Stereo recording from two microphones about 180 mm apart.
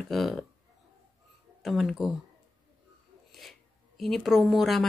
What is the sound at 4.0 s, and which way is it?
Speech, centre (ahead or behind).